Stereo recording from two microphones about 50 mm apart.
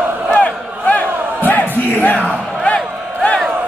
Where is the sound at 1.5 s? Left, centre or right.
Left.